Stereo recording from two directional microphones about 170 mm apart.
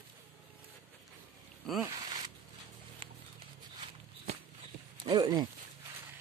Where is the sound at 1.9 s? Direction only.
25° right (ahead or behind).